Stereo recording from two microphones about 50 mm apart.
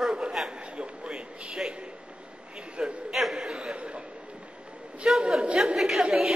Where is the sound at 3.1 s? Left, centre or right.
Centre; by 4.0 s right.